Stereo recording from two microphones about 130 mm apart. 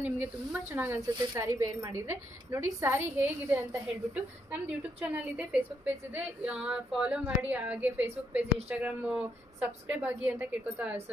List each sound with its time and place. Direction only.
0.0 s a woman's voice: 15° right (ahead or behind)
4.6 s a woman's voice: 10° right (ahead or behind)